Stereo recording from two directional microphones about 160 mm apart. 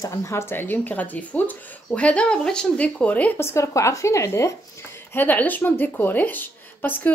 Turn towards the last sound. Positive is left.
turn(degrees=10)  # may be behind; listen again after turning